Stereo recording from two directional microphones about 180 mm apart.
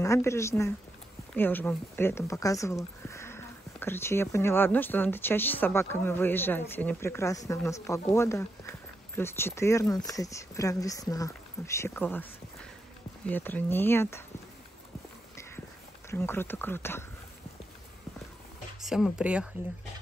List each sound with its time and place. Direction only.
0.0 s speech: 15° left (ahead or behind)
16.1 s speech: 15° left (ahead or behind)
18.8 s speech: centre (ahead or behind)